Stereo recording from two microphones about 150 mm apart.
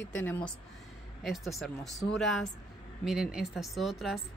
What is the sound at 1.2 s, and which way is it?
Speech, centre (ahead or behind).